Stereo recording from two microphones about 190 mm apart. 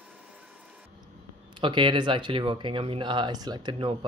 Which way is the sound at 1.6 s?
25° right (ahead or behind).